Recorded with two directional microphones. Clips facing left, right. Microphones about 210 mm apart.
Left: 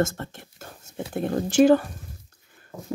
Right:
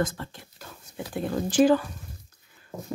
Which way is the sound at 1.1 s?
45° left (ahead or behind).